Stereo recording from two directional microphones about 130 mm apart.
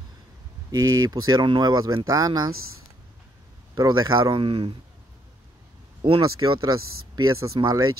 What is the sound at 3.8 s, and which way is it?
Speech, 35° right (ahead or behind).